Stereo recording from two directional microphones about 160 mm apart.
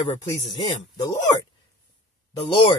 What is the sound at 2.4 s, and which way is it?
Speech, 35° left (ahead or behind).